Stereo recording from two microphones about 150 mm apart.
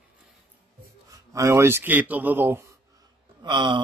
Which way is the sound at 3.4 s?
30° right (ahead or behind).